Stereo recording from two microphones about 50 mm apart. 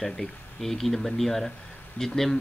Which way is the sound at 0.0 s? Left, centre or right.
Centre.